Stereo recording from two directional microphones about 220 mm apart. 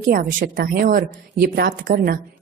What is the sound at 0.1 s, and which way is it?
A woman's voice, 40° right (ahead or behind).